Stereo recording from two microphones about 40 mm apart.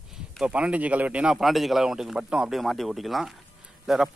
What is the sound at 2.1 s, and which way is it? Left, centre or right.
Speech, centre.